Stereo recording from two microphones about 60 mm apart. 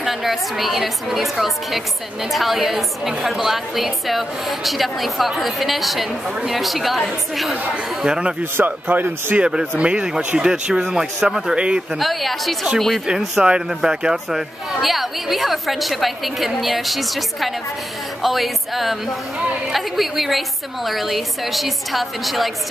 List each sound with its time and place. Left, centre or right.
0.0 s a woman's voice: centre
8.0 s speech: centre
8.5 s speech: right
9.4 s speech: centre
12.0 s a woman's voice: centre